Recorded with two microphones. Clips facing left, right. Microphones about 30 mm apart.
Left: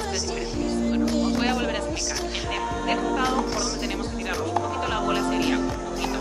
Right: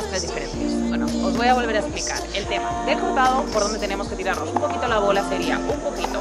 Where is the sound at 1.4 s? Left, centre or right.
Centre.